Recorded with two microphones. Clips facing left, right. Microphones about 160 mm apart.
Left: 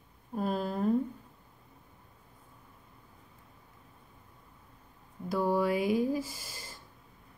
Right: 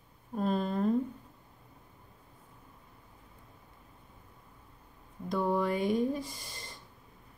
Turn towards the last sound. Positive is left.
turn(degrees=5)  # may be behind; listen again after turning